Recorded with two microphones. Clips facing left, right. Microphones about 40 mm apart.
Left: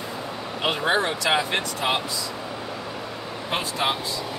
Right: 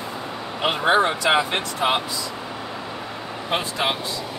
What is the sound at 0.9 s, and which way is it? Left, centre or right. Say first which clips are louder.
Speech: right 5 dB; right.